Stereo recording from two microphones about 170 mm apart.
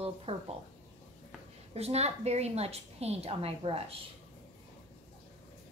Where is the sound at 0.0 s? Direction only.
35° right (ahead or behind).